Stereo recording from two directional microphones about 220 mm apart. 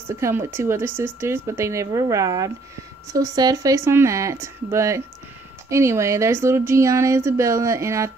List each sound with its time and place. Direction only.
0.1 s speech: 10° right (ahead or behind)